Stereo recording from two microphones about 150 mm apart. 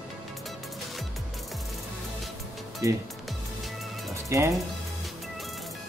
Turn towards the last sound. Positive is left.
turn(degrees=-20)  # may be behind; listen again after turning